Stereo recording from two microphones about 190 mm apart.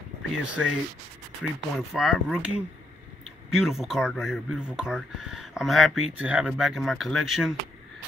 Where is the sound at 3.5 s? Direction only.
Centre (ahead or behind).